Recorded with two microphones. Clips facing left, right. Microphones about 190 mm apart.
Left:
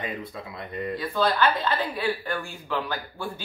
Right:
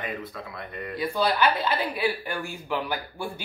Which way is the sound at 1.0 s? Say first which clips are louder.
Even; 10° right (ahead or behind).